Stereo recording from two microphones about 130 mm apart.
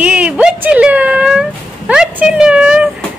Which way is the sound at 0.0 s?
10° right (ahead or behind).